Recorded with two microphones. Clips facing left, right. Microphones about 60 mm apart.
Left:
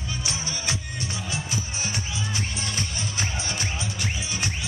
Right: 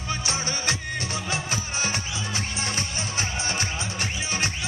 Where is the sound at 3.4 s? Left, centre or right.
Right.